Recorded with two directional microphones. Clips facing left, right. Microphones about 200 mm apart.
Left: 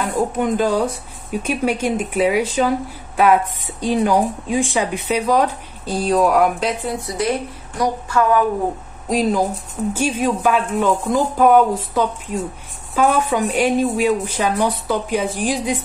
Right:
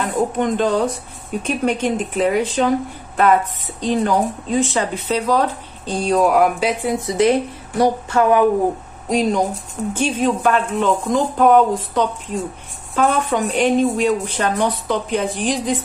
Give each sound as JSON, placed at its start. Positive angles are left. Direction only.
{"t": 0.0, "sound": "speech", "side_deg": 5}
{"t": 6.8, "sound": "a woman's voice", "side_deg": -20}
{"t": 9.1, "sound": "speech", "side_deg": 0}